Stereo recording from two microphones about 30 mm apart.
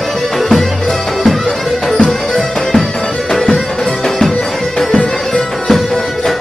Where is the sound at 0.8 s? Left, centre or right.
Centre.